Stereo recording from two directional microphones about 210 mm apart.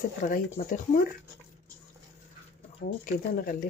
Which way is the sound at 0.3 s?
40° left (ahead or behind).